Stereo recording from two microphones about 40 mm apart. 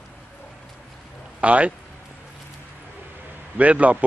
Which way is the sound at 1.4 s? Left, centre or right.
Right.